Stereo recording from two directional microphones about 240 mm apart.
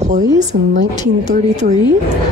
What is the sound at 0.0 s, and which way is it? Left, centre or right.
A woman's voice, right.